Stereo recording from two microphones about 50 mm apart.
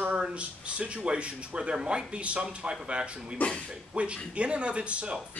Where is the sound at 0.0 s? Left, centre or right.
Right.